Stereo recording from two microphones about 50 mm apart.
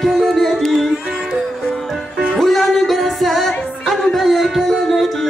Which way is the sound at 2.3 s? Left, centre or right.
Centre.